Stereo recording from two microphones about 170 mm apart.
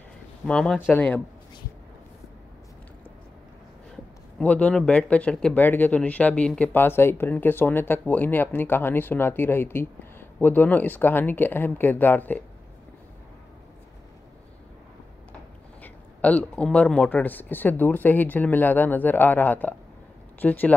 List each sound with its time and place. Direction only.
0.5 s speech: 5° left (ahead or behind)
3.9 s speech: 5° left (ahead or behind)
15.8 s speech: 10° left (ahead or behind)